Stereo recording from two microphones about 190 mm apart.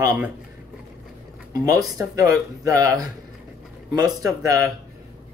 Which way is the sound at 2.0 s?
15° right (ahead or behind).